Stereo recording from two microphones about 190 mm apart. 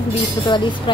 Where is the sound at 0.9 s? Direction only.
25° left (ahead or behind).